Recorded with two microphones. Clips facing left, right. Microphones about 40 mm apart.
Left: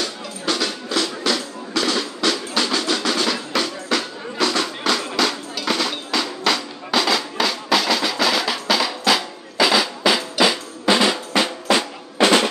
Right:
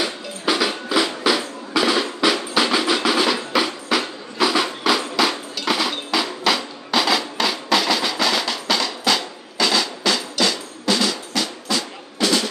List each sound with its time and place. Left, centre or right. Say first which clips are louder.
0.0 s music: right 2 dB; centre
4.8 s a sound: right 1 dB; centre
5.7 s music: right 1 dB; centre; by 12.4 s left